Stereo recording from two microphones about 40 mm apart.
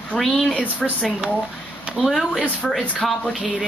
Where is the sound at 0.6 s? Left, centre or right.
Left.